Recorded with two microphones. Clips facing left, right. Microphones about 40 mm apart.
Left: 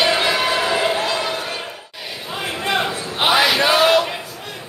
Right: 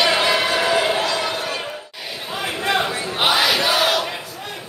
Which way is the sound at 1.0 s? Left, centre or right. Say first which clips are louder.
Even; centre.